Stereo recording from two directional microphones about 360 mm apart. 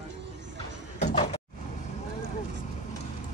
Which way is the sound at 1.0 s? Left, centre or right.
Centre.